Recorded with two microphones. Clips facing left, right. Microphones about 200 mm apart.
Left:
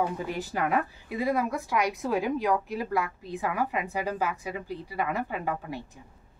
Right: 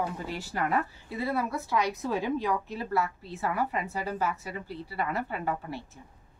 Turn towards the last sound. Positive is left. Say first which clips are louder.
# left 1 dB
turn(degrees=15)  # may be behind; listen again after turning